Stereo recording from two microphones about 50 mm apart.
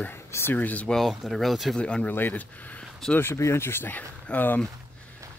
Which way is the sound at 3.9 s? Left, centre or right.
Left.